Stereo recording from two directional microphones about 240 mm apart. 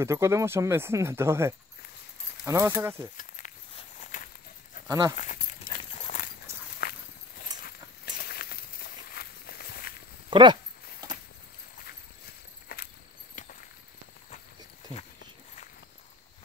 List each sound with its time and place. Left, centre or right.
0.0 s speech: centre
3.2 s walk: left
4.8 s speech: centre
5.1 s speech: left
5.9 s clip-clop: left
6.8 s walk: left
10.3 s dog: centre
12.6 s cricket: left